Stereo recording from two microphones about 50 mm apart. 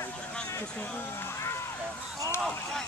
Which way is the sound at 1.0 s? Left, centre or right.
Left.